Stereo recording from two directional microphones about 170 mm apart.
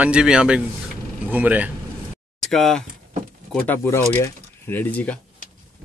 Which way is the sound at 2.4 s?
5° left (ahead or behind).